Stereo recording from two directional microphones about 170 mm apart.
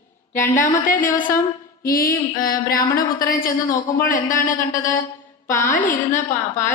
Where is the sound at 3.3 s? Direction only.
55° left (ahead or behind).